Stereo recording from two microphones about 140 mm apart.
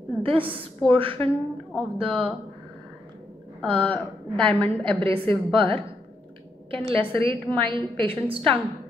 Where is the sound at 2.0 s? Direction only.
40° right (ahead or behind).